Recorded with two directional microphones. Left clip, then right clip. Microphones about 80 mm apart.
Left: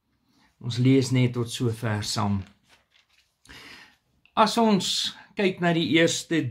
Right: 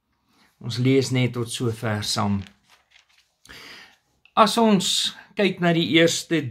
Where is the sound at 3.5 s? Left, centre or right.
Centre.